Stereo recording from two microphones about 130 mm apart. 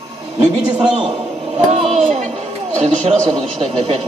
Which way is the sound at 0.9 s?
40° right (ahead or behind).